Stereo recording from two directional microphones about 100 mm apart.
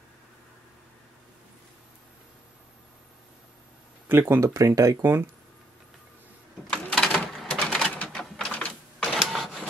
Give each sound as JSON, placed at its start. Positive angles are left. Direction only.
{"t": 4.1, "sound": "speech", "side_deg": -25}
{"t": 6.7, "sound": "a sound", "side_deg": 5}
{"t": 7.9, "sound": "printer", "side_deg": 10}
{"t": 9.1, "sound": "printer", "side_deg": -5}